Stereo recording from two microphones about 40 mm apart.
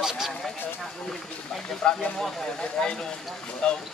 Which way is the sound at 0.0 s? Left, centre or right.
Centre.